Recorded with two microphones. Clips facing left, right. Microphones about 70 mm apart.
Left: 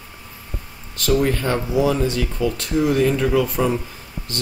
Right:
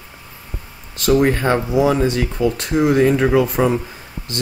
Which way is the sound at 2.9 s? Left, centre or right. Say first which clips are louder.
Right 4 dB; right.